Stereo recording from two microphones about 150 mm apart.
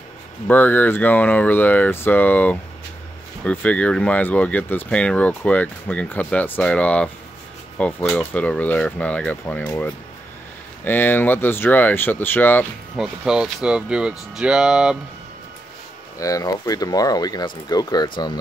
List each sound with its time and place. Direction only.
0.5 s speech: 10° left (ahead or behind)
10.8 s speech: 15° left (ahead or behind)
12.9 s speech: 5° right (ahead or behind)
16.2 s speech: 25° left (ahead or behind)